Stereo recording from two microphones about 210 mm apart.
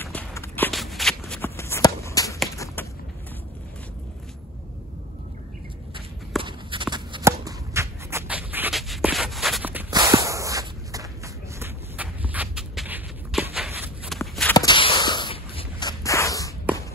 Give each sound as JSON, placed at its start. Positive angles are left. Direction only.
{"t": 0.0, "sound": "walk", "side_deg": 10}
{"t": 0.7, "sound": "shuffle", "side_deg": 0}
{"t": 2.5, "sound": "a sound", "side_deg": 15}
{"t": 6.4, "sound": "shuffle", "side_deg": -25}
{"t": 9.9, "sound": "walk", "side_deg": -15}
{"t": 11.6, "sound": "shuffle", "side_deg": -5}
{"t": 14.0, "sound": "walk", "side_deg": 0}
{"t": 14.5, "sound": "a sound", "side_deg": 20}